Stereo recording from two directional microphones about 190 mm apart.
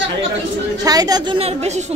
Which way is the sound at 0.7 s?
20° right (ahead or behind).